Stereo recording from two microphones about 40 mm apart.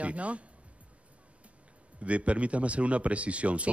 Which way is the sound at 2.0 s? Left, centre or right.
Right.